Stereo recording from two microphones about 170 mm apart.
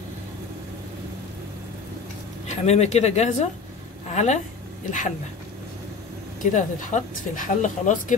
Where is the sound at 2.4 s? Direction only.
40° left (ahead or behind).